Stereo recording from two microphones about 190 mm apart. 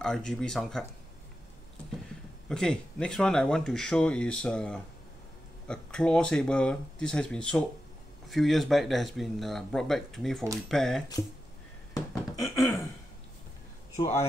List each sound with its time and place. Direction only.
0.0 s speech: 5° left (ahead or behind)
2.4 s speech: 5° left (ahead or behind)
11.9 s a sound: 20° left (ahead or behind)